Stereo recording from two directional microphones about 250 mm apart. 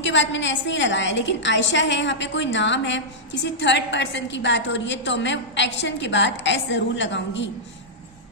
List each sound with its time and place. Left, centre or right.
0.0 s a woman's voice: left